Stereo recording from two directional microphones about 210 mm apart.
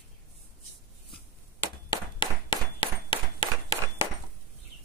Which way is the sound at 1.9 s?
20° left (ahead or behind).